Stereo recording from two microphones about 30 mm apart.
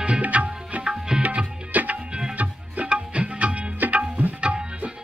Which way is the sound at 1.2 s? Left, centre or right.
Right.